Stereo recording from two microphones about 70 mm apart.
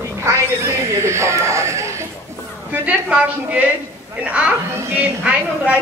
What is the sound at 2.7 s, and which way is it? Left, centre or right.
A woman's voice, right.